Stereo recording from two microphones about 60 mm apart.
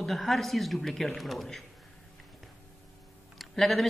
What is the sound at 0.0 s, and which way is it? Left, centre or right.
Speech, centre.